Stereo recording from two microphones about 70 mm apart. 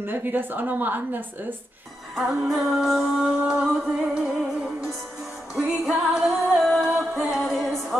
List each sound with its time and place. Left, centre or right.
0.0 s a woman's voice: right
2.1 s music: centre
5.9 s music: centre